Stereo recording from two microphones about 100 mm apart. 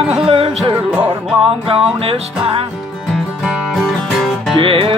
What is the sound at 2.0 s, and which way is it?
Music, 75° right (ahead or behind).